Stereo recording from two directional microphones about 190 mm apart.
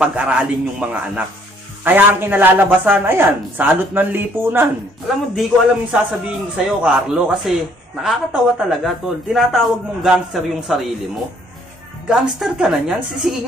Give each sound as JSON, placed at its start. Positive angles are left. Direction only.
{"t": 0.0, "sound": "a man's voice", "side_deg": -5}
{"t": 5.0, "sound": "a man's voice", "side_deg": 0}
{"t": 12.1, "sound": "a man's voice", "side_deg": -5}